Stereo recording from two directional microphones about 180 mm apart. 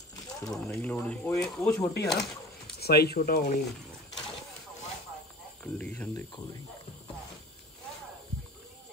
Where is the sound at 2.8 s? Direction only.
60° left (ahead or behind).